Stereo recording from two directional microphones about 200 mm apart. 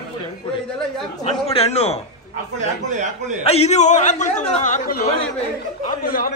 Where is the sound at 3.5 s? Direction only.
30° left (ahead or behind).